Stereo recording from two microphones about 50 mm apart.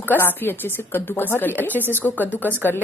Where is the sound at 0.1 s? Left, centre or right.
Left.